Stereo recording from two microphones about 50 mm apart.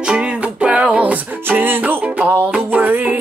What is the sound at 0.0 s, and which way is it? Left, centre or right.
Music, centre.